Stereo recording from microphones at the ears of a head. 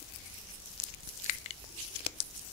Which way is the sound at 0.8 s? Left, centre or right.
Left.